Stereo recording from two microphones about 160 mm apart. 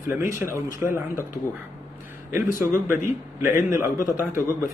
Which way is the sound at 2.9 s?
55° left (ahead or behind).